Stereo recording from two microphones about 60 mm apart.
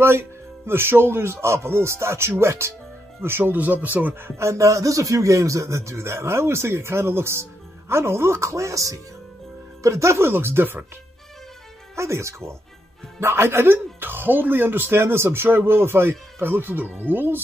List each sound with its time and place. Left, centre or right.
0.0 s a man's voice: right
3.2 s speech: right
3.5 s speech: right
4.4 s a man's voice: right
9.8 s speech: right
11.9 s a man's voice: right